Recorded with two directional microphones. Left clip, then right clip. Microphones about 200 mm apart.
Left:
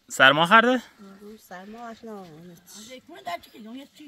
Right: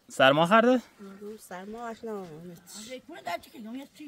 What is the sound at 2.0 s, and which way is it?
Speech, 25° right (ahead or behind).